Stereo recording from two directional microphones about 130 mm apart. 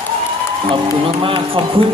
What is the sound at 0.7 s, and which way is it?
A man's voice, 45° right (ahead or behind).